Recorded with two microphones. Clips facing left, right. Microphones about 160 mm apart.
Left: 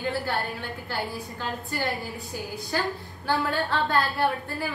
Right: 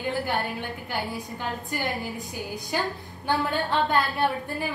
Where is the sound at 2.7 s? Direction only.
15° right (ahead or behind).